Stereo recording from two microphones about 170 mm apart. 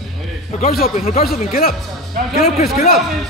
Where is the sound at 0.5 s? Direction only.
55° left (ahead or behind).